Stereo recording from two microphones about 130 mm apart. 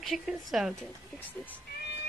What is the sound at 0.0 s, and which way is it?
Speech, centre (ahead or behind).